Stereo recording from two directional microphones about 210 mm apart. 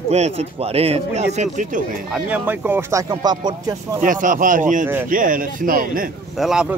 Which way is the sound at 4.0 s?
40° right (ahead or behind).